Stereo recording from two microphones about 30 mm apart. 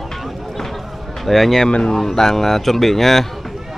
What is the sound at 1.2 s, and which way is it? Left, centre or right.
Speech, centre.